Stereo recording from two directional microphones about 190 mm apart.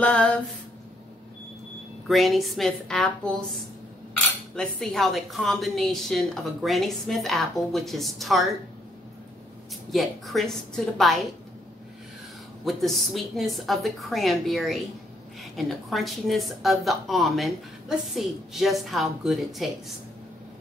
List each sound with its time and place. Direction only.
0.0 s a woman's voice: 5° left (ahead or behind)
2.0 s a woman's voice: centre (ahead or behind)
9.8 s a woman's voice: centre (ahead or behind)
12.6 s a woman's voice: centre (ahead or behind)